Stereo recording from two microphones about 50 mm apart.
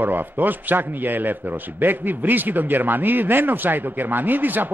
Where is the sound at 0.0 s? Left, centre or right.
Right.